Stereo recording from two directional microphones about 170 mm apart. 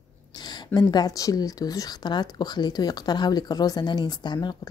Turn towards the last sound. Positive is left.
turn(degrees=25)  # may be behind; listen again after turning